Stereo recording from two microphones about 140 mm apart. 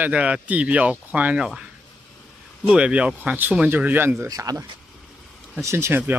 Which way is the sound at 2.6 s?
10° right (ahead or behind).